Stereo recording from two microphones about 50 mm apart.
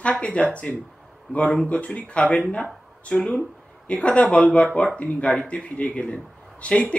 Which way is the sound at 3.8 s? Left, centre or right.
Left.